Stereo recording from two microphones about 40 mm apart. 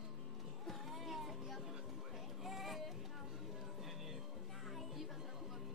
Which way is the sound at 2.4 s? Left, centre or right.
Centre.